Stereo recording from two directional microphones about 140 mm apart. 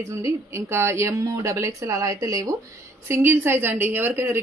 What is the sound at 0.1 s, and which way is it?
A woman's voice, 20° right (ahead or behind).